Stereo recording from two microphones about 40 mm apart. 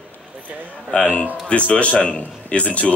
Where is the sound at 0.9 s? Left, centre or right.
Left.